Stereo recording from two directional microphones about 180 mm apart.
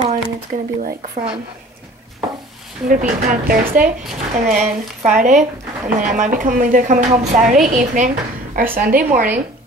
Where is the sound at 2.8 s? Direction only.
55° right (ahead or behind).